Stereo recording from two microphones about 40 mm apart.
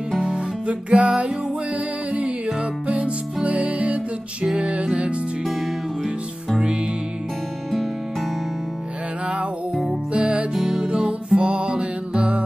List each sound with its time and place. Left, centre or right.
0.2 s music: right
2.1 s music: right
9.8 s music: right
10.5 s music: centre; by 12.4 s right